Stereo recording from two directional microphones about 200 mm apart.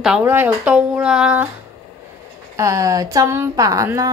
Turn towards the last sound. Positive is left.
turn(degrees=-15)  # may be behind; listen again after turning